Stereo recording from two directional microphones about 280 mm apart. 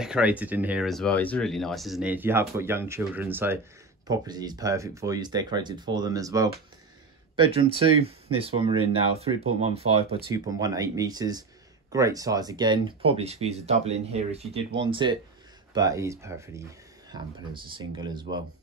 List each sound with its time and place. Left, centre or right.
0.0 s speech: centre